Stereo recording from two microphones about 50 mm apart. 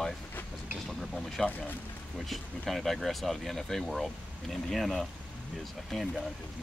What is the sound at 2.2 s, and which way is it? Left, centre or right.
Speech, centre.